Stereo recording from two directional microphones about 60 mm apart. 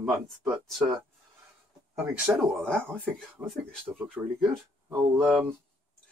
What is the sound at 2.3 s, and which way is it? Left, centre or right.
Speech, right.